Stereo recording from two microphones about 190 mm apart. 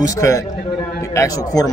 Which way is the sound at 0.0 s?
15° left (ahead or behind).